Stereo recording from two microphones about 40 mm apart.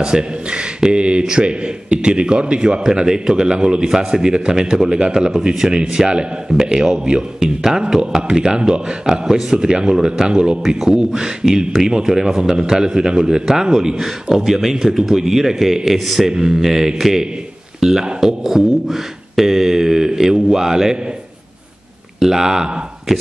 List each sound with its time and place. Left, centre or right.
0.0 s a man's voice: right
22.2 s speech: centre